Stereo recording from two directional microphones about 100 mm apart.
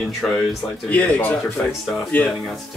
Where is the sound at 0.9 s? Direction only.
15° left (ahead or behind).